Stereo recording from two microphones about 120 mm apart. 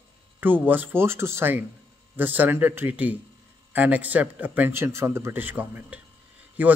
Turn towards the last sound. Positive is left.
turn(degrees=-15)  # may be behind; listen again after turning